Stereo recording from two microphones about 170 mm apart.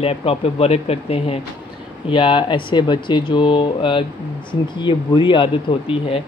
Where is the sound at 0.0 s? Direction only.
35° left (ahead or behind).